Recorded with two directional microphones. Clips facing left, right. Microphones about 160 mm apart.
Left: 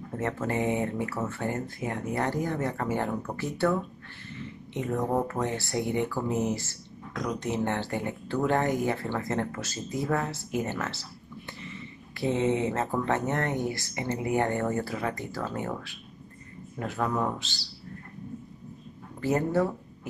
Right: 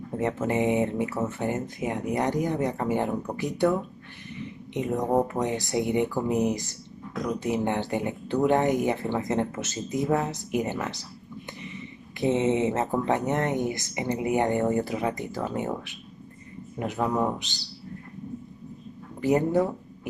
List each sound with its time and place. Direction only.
0.1 s speech: 20° right (ahead or behind)
19.2 s speech: 15° right (ahead or behind)